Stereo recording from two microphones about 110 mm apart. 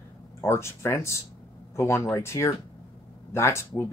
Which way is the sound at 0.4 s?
25° left (ahead or behind).